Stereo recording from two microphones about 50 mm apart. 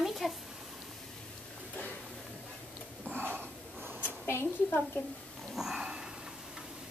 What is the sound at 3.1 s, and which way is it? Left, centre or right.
Wheeze, right.